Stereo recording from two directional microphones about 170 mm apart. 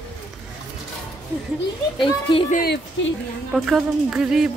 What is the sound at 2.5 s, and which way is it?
Speech, 70° left (ahead or behind).